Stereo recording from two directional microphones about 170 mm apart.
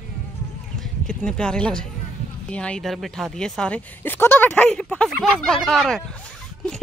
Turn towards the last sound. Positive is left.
turn(degrees=0)  # may be behind; listen again after turning